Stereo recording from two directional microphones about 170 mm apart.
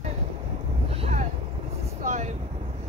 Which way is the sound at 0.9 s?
40° right (ahead or behind).